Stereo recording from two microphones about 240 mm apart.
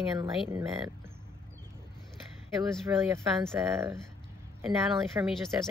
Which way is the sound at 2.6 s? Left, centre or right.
Centre.